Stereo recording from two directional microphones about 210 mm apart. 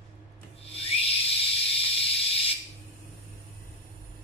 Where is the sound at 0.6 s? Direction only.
25° left (ahead or behind).